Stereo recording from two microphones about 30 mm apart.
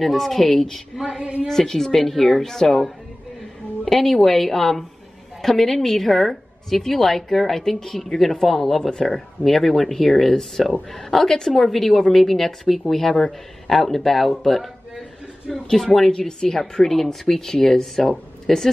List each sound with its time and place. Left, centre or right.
0.0 s speech: centre
1.2 s a woman's voice: right
1.5 s speech: centre
3.8 s speech: centre